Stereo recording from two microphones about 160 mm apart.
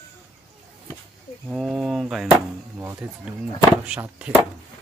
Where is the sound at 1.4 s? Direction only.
5° right (ahead or behind).